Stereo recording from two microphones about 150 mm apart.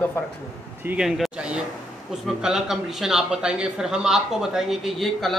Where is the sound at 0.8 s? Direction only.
5° right (ahead or behind).